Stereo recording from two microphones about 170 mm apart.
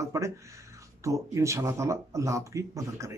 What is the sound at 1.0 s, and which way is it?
Speech, 15° right (ahead or behind).